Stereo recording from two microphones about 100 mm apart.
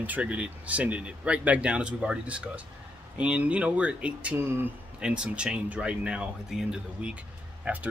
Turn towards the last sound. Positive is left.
turn(degrees=-15)  # may be behind; listen again after turning